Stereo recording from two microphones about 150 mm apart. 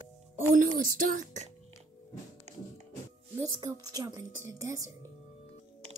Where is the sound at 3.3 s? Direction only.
20° right (ahead or behind).